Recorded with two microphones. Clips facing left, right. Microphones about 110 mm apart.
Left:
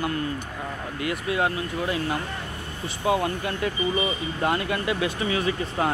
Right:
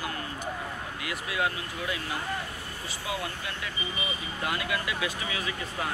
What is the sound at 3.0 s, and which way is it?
Speech, 50° left (ahead or behind).